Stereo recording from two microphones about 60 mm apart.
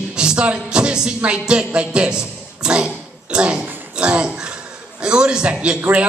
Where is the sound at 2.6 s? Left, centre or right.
Centre.